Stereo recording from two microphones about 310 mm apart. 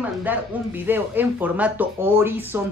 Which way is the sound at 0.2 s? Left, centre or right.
Centre.